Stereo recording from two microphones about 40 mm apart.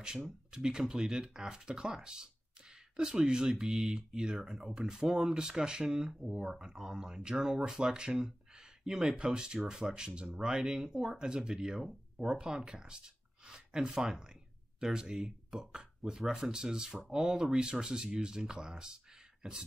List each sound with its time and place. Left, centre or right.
0.5 s speech: centre
9.1 s speech: right
17.2 s speech: centre
17.5 s speech: centre